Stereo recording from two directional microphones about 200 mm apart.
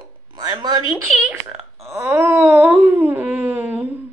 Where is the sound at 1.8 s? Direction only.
15° right (ahead or behind).